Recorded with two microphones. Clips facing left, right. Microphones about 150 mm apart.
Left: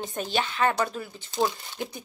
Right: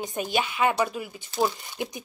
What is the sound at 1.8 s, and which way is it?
Speech, 15° right (ahead or behind).